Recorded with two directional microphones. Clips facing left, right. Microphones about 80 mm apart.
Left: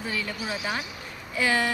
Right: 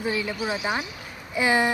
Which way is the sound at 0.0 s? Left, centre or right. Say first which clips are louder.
Right 5 dB; centre.